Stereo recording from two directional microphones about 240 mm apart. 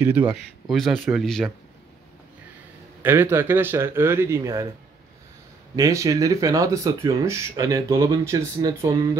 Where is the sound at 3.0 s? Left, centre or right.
Centre.